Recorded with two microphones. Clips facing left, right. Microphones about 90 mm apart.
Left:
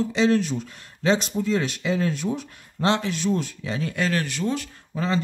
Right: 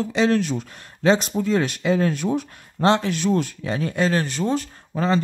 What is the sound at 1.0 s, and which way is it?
Speech, 45° right (ahead or behind).